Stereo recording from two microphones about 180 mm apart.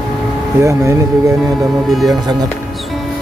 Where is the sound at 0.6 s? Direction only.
15° right (ahead or behind).